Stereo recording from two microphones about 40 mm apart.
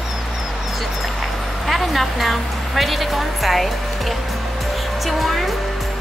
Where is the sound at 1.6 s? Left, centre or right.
Centre.